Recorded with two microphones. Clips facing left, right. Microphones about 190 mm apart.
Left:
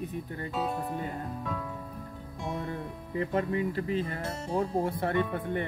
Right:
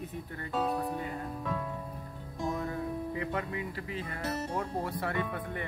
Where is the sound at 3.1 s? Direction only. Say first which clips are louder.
Left 6 dB; 35° left (ahead or behind).